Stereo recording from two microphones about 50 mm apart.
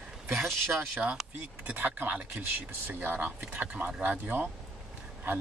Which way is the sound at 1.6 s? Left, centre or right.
Right.